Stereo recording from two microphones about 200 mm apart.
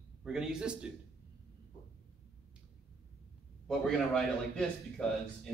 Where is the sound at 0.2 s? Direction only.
5° right (ahead or behind).